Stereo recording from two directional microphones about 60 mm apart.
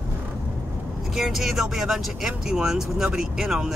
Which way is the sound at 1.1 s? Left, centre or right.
Centre.